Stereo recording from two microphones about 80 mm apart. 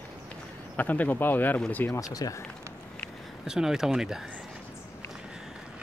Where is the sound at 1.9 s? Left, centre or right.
Left.